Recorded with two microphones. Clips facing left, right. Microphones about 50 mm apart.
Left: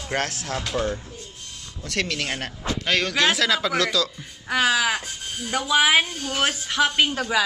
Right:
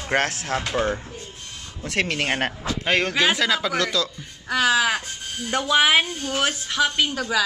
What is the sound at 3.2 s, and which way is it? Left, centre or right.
Speech, centre.